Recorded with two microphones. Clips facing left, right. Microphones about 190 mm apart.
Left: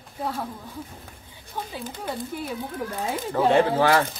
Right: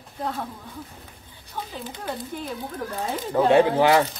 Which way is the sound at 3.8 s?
15° right (ahead or behind).